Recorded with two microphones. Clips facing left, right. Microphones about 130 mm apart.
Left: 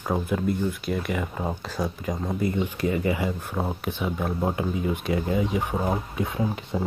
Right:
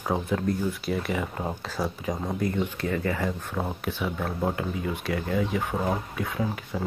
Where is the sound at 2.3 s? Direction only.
10° left (ahead or behind).